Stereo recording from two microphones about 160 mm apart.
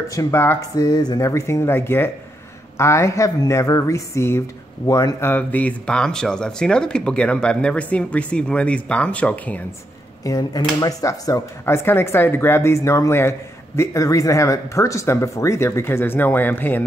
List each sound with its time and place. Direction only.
0.1 s speech: 20° left (ahead or behind)
0.7 s speech: 25° left (ahead or behind); by 9.6 s 10° left (ahead or behind)
10.2 s speech: 25° left (ahead or behind)